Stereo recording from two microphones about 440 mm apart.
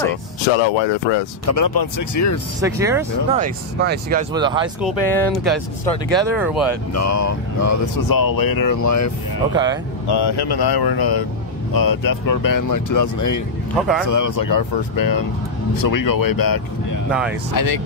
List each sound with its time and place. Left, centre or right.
0.6 s speech: left
1.4 s speech: left
2.6 s speech: centre
6.9 s speech: left
9.5 s speech: centre
10.0 s speech: left
13.7 s speech: centre
14.0 s speech: left